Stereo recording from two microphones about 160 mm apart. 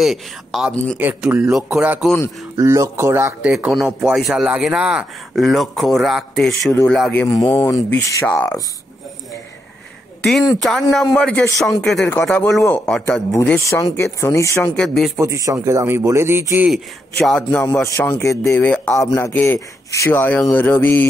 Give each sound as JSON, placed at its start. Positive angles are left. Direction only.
{"t": 0.0, "sound": "a man's voice", "side_deg": 0}
{"t": 2.0, "sound": "a man's voice", "side_deg": 10}
{"t": 2.5, "sound": "a man's voice", "side_deg": -15}
{"t": 3.5, "sound": "a man's voice", "side_deg": 0}
{"t": 10.6, "sound": "a man's voice", "side_deg": 0}
{"t": 13.6, "sound": "speech", "side_deg": 20}
{"t": 14.8, "sound": "a man's voice", "side_deg": 5}
{"t": 15.1, "sound": "a man's voice", "side_deg": -20}
{"t": 17.2, "sound": "a man's voice", "side_deg": 5}
{"t": 17.8, "sound": "a man's voice", "side_deg": 20}